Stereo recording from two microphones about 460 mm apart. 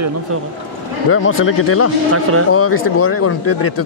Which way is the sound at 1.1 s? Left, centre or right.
Left.